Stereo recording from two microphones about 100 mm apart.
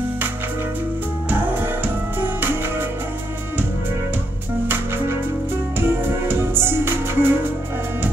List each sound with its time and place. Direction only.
2.1 s music: 20° right (ahead or behind)
4.6 s music: 25° right (ahead or behind)